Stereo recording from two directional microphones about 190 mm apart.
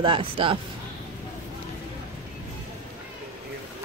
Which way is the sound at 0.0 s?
25° right (ahead or behind).